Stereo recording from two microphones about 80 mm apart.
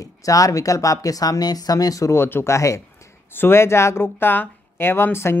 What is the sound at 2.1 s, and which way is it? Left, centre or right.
Speech, left.